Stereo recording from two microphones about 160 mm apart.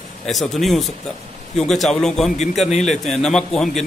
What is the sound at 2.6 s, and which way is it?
Speech, 45° left (ahead or behind).